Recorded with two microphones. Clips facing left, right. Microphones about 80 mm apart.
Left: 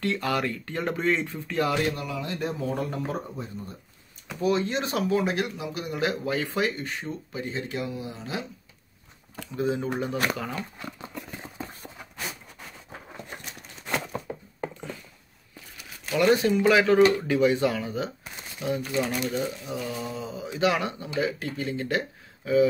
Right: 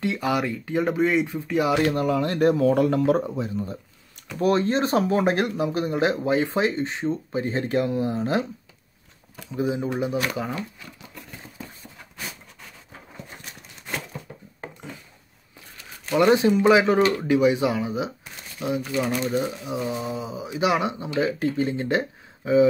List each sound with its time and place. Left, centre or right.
0.0 s speech: centre
1.9 s speech: right
4.4 s speech: right
9.4 s speech: centre
14.3 s a sound: left
16.2 s speech: right; by 18.7 s centre
19.2 s speech: centre